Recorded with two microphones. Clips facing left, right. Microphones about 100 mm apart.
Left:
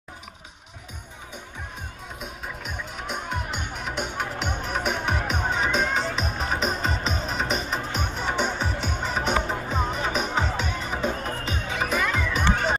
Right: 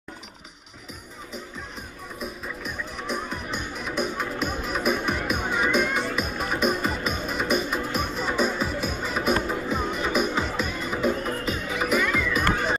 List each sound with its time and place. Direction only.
4.0 s music: 25° left (ahead or behind)